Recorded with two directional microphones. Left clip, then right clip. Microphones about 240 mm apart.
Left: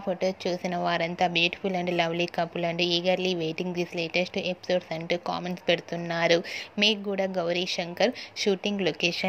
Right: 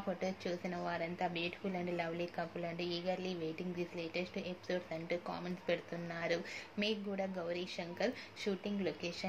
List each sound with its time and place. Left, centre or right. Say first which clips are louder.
0.2 s a woman's voice: left 12 dB; left